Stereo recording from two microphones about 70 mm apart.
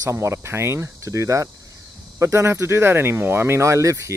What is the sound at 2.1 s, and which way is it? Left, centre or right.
Speech, right.